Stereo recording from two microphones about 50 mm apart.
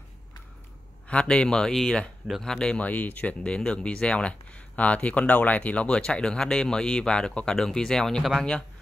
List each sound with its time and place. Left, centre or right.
1.0 s speech: left
2.8 s speech: left; by 8.2 s centre
8.2 s speech: centre